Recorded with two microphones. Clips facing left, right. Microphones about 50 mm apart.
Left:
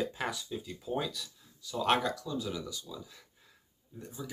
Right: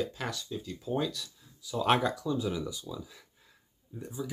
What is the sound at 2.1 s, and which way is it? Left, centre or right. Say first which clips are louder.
Speech: right 5 dB; centre.